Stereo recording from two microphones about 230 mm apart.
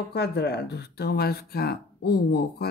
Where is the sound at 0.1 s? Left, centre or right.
Left.